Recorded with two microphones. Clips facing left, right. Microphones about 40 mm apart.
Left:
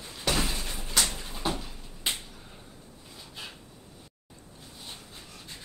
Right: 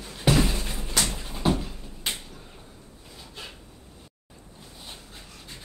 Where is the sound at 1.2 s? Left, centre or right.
Centre.